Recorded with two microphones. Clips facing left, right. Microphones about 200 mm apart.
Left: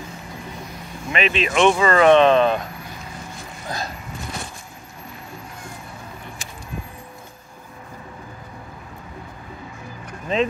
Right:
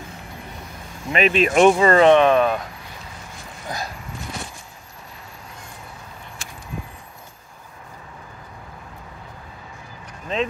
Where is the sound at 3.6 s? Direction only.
15° right (ahead or behind).